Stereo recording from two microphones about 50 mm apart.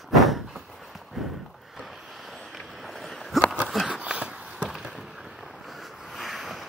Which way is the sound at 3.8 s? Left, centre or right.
Right.